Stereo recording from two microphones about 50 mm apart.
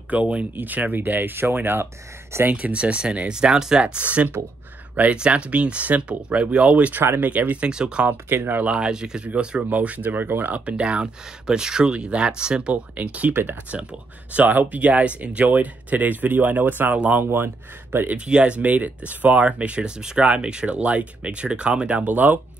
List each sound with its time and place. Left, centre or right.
0.1 s speech: right
2.5 s speech: right
4.0 s speech: right
7.7 s speech: centre; by 10.5 s right
10.5 s speech: right
13.3 s speech: right
14.3 s speech: right
18.0 s speech: right